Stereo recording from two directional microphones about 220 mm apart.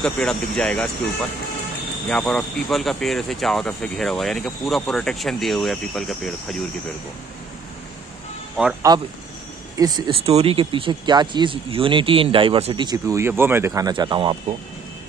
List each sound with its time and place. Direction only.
0.0 s speech: centre (ahead or behind)
2.0 s speech: 5° left (ahead or behind)
8.6 s speech: centre (ahead or behind)
9.8 s speech: 20° right (ahead or behind)